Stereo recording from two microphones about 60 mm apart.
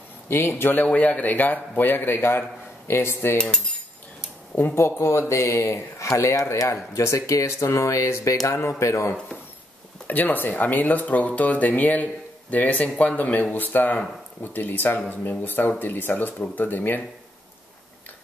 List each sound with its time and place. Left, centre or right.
0.3 s a man's voice: left
4.7 s speech: left
8.5 s speech: left
10.0 s a man's voice: left